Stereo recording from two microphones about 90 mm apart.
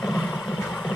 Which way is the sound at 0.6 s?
5° left (ahead or behind).